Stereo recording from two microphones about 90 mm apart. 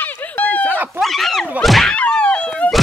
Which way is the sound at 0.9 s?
Centre (ahead or behind).